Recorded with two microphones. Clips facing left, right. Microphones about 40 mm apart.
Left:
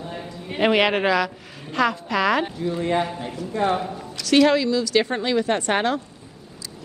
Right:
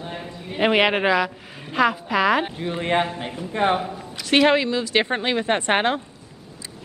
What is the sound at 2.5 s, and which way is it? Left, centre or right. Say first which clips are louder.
Speech: even; right.